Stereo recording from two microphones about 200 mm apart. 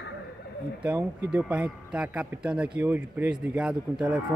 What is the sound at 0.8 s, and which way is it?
Speech, 5° right (ahead or behind).